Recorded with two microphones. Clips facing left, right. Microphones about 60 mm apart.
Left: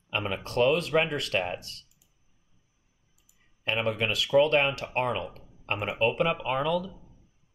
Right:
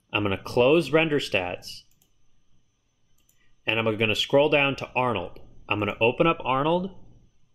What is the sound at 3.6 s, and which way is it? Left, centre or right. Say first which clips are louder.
Speech: right 4 dB; right.